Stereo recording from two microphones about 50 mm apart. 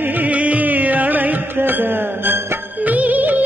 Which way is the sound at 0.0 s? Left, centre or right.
Right.